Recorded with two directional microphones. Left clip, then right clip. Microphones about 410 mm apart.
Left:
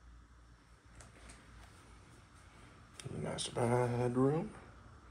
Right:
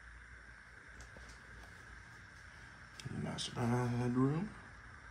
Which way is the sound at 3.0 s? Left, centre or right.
Centre.